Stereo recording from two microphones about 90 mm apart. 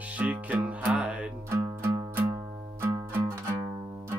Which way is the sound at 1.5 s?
25° right (ahead or behind).